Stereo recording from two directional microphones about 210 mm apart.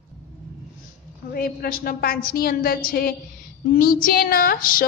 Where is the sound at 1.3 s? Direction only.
45° left (ahead or behind).